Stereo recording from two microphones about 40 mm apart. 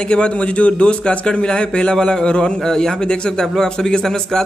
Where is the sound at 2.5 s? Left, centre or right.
Centre.